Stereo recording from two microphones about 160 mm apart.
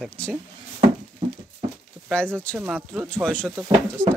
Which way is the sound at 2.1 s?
5° left (ahead or behind).